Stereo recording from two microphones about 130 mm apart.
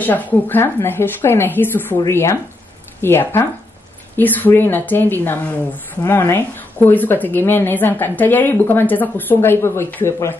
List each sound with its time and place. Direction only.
0.0 s a woman's voice: 15° left (ahead or behind)